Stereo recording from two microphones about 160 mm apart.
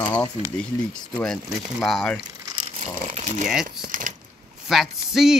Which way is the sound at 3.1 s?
50° right (ahead or behind).